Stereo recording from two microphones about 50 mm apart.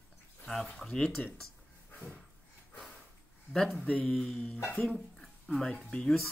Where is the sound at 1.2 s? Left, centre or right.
Left.